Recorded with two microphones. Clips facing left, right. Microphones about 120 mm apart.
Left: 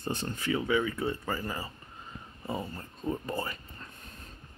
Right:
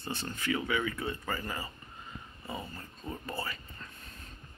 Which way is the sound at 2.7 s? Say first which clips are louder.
Left 7 dB; 20° left (ahead or behind).